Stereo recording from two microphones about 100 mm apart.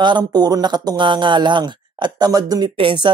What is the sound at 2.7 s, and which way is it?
Speech, 55° right (ahead or behind).